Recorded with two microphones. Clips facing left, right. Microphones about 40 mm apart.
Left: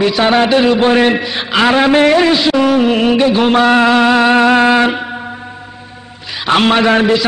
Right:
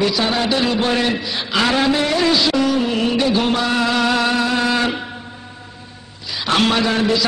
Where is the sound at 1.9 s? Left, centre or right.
Left.